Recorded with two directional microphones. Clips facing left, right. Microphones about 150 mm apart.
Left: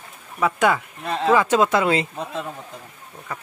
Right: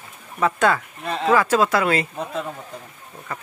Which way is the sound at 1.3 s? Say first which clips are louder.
Even; 20° left (ahead or behind).